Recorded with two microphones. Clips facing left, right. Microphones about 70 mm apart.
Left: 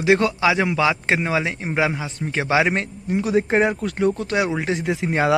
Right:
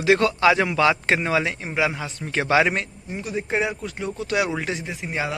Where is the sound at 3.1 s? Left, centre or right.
Left.